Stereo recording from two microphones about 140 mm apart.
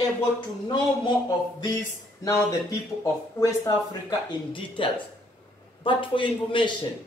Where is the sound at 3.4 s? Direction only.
25° left (ahead or behind).